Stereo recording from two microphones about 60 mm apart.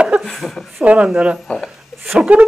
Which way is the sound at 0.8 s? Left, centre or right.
Centre.